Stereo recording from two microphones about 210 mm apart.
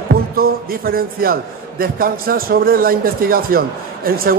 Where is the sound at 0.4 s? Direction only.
45° right (ahead or behind).